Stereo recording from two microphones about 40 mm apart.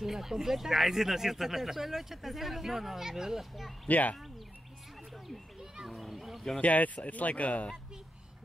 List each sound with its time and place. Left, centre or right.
0.0 s speech: centre
3.8 s speech: left
5.9 s a sound: centre
6.6 s speech: left